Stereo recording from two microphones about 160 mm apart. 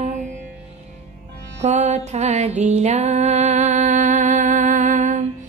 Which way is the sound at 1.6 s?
45° right (ahead or behind).